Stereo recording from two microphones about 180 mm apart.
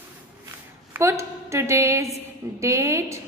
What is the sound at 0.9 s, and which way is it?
A woman's voice, 15° right (ahead or behind).